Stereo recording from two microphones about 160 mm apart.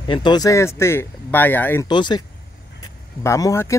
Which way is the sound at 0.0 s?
30° left (ahead or behind).